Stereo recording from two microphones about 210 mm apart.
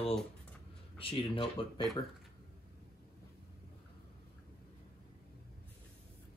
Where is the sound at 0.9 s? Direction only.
25° left (ahead or behind).